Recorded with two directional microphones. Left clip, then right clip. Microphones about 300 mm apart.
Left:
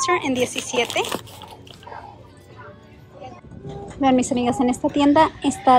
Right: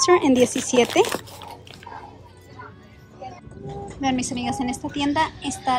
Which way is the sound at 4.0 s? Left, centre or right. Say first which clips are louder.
Left 7 dB; centre.